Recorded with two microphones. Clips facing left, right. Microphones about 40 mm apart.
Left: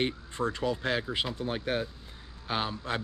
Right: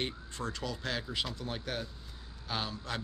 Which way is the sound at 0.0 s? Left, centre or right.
Left.